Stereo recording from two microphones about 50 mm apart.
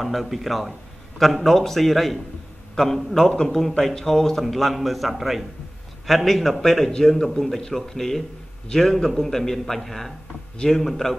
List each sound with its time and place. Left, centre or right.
0.0 s a man's voice: centre